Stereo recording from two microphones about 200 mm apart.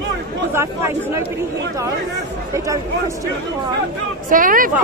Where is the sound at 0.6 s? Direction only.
10° right (ahead or behind).